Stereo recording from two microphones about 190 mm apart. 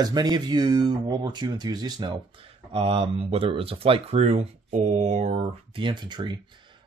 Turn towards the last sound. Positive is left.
turn(degrees=-25)  # may be behind; listen again after turning